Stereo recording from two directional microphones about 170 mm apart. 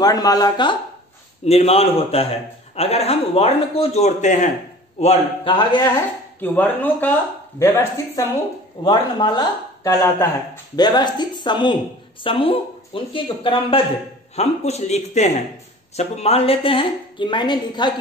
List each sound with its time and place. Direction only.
0.0 s speech: 20° left (ahead or behind)
1.4 s a woman's voice: 35° left (ahead or behind)
5.0 s speech: 30° left (ahead or behind)
6.4 s speech: 10° left (ahead or behind)
10.8 s a woman's voice: 25° left (ahead or behind)